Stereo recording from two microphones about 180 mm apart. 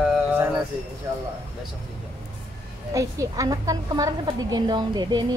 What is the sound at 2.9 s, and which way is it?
A woman's voice, 20° right (ahead or behind).